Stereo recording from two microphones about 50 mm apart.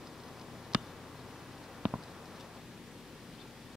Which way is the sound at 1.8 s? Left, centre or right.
Centre.